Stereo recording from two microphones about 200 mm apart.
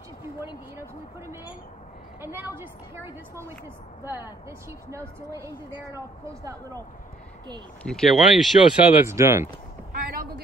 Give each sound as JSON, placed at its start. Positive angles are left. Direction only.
{"t": 0.2, "sound": "a woman's voice", "side_deg": -10}
{"t": 7.8, "sound": "speech", "side_deg": 0}
{"t": 9.0, "sound": "a woman's voice", "side_deg": -15}
{"t": 9.9, "sound": "a sound", "side_deg": -45}